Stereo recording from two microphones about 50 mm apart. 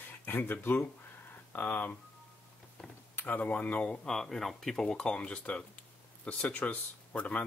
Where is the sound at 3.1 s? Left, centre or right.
Left.